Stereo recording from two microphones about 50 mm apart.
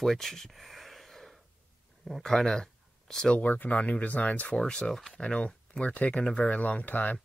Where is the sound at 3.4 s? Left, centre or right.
Left.